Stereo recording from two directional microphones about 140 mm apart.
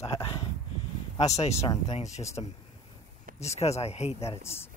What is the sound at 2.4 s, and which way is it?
Speech, 40° left (ahead or behind).